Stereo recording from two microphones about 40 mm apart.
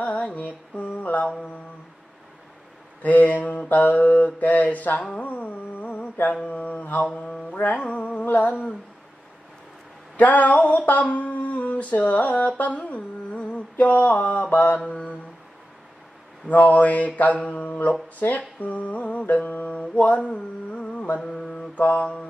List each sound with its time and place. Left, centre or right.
0.0 s music: left
3.0 s mantra: left
5.2 s carnatic music: left
6.4 s mantra: left
10.1 s a sound: left
16.4 s mantra: left
21.2 s mantra: centre
21.7 s mantra: left